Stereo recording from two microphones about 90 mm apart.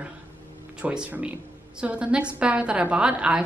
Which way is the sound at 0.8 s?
15° right (ahead or behind).